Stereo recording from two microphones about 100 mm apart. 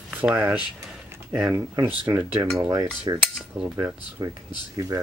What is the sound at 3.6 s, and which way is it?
Speech, 5° right (ahead or behind).